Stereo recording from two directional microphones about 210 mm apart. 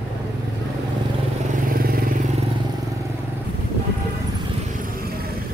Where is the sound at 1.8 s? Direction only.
45° right (ahead or behind).